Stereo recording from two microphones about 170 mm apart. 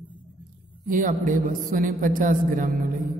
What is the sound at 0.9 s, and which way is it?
A woman's voice, 50° right (ahead or behind).